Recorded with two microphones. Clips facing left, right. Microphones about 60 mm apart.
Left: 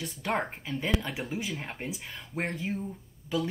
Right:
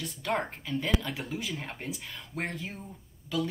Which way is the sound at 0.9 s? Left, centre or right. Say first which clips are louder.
Even; centre.